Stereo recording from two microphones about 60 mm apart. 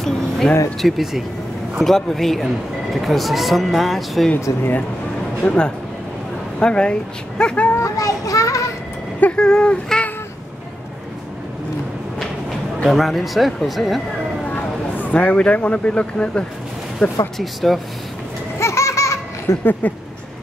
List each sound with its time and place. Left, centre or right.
0.4 s speech: centre
0.7 s speech: centre
4.5 s speech: left
5.4 s speech: left
7.7 s a sound: left
9.4 s speech: centre
12.9 s speech: centre
14.4 s speech: left
17.4 s speech: centre
18.6 s laughter: left
19.6 s speech: left